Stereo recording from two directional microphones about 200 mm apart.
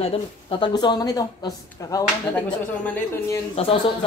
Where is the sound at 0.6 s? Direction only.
20° left (ahead or behind).